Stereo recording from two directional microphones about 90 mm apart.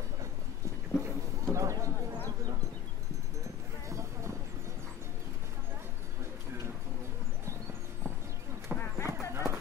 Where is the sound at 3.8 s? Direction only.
35° right (ahead or behind).